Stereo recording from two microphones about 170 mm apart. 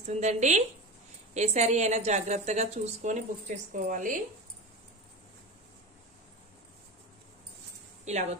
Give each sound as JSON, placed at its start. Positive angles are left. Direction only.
{"t": 0.0, "sound": "a woman's voice", "side_deg": -40}
{"t": 8.0, "sound": "a woman's voice", "side_deg": -40}